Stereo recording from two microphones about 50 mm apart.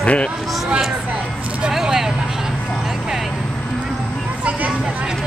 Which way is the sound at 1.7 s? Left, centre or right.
Centre.